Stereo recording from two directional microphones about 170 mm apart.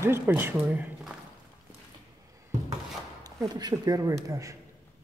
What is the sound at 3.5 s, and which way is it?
Speech, 25° right (ahead or behind).